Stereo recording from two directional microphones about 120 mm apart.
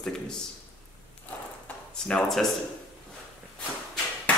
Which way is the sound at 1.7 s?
15° left (ahead or behind).